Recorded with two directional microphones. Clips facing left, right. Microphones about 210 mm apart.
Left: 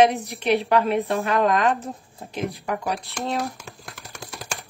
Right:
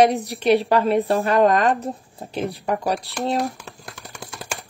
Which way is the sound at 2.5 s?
35° right (ahead or behind).